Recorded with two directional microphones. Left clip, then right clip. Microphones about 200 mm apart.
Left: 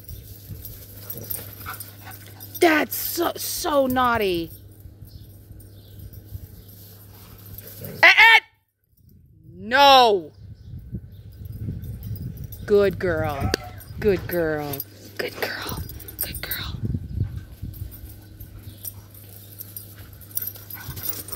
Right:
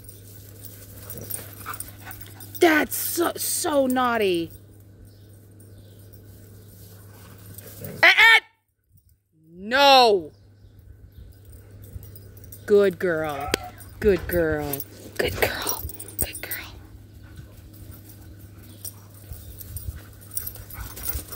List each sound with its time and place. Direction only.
0.9 s dog: centre (ahead or behind)
1.6 s speech: 10° right (ahead or behind)
7.6 s dog: centre (ahead or behind)
9.6 s speech: centre (ahead or behind)
12.6 s speech: centre (ahead or behind)
15.1 s speech: 25° right (ahead or behind)
16.2 s whispering: 10° right (ahead or behind)
19.6 s dog: 10° left (ahead or behind)